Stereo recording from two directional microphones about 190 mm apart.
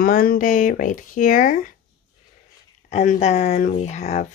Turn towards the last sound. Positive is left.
turn(degrees=35)  # may be behind; listen again after turning